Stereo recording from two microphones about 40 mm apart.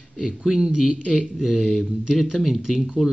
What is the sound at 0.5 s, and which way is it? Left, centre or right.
Speech, centre.